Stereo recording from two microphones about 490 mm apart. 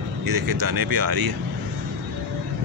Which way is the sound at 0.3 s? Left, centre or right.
Right.